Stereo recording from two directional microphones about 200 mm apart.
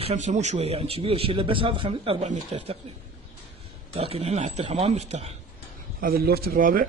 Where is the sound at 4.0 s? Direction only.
30° right (ahead or behind).